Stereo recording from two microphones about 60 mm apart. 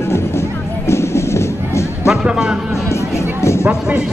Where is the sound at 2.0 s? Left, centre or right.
Centre.